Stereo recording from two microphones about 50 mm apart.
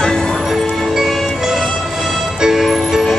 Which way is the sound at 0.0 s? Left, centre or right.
Centre.